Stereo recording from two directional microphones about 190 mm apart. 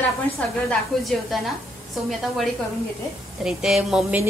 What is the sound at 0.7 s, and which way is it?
Speech, centre (ahead or behind).